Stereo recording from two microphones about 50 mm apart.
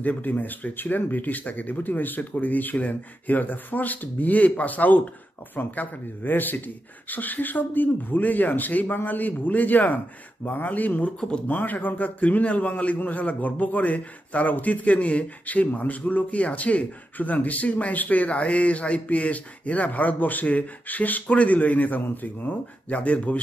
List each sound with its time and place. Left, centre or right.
0.0 s a man's voice: left
11.1 s speech: centre
11.5 s a man's voice: left